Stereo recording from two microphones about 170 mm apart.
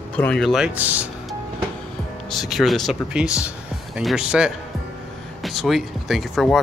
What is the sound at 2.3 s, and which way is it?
Speech, centre (ahead or behind).